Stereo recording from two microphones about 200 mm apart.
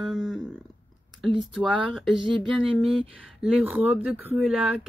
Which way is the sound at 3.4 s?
5° right (ahead or behind).